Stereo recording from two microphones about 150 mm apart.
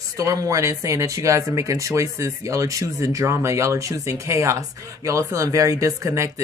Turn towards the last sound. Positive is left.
turn(degrees=-20)  # may be behind; listen again after turning